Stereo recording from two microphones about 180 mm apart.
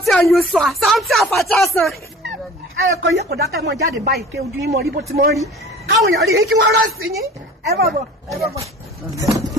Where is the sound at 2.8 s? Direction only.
90° right; by 5.3 s 60° right (ahead or behind).